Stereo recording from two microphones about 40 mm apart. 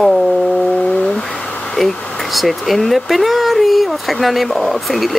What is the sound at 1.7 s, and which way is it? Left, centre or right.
Speech, centre.